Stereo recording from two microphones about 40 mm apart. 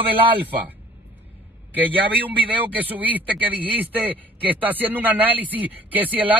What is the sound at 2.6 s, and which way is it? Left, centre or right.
Speech, right.